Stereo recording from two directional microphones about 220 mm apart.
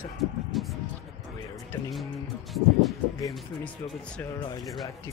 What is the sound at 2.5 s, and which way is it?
Speech, centre (ahead or behind).